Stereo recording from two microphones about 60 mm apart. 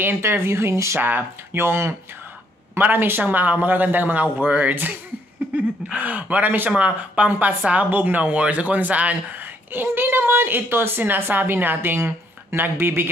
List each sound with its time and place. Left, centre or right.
0.0 s speech: right
1.0 s speech: right
5.9 s speech: right